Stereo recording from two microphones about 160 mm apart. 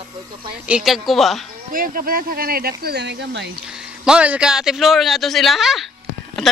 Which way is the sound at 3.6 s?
5° right (ahead or behind).